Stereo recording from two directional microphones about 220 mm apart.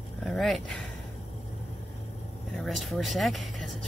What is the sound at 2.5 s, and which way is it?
Speech, centre (ahead or behind).